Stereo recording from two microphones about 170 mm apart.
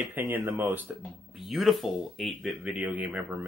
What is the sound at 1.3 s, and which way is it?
Speech, centre (ahead or behind).